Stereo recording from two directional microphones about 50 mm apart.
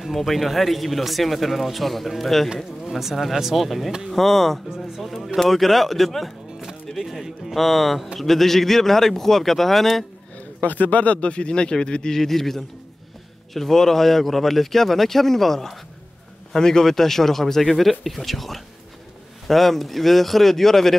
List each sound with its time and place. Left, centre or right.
0.0 s speech: centre
4.6 s speech: centre
10.6 s speech: left
12.2 s speech: centre